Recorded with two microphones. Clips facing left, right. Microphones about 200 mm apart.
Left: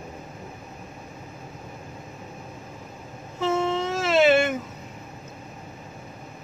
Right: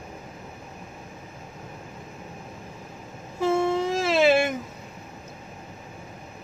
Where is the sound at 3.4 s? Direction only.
10° right (ahead or behind).